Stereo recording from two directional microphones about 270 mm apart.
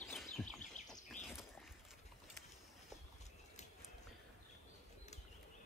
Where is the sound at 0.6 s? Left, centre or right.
Left.